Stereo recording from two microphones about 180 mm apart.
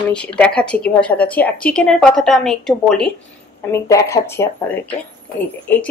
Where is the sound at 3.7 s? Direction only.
15° left (ahead or behind).